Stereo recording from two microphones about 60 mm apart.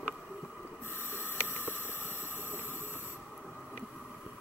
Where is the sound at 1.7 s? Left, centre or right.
Left.